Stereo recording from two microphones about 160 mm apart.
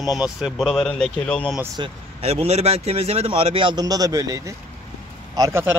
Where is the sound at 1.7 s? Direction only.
35° right (ahead or behind).